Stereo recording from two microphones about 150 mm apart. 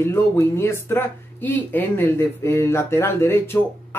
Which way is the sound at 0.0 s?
20° left (ahead or behind).